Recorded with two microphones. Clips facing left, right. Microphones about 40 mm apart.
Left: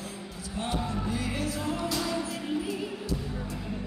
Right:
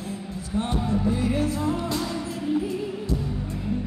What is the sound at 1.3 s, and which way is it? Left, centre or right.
Music, right.